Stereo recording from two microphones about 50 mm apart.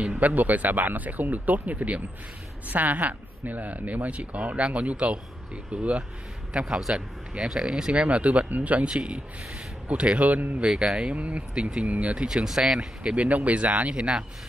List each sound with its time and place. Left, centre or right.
0.2 s speech: right
10.8 s speech: right
12.4 s speech: centre
13.0 s speech: right